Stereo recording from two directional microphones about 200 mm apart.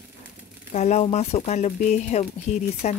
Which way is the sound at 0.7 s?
35° left (ahead or behind).